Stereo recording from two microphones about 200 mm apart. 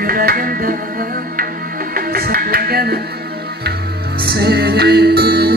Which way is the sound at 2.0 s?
50° right (ahead or behind).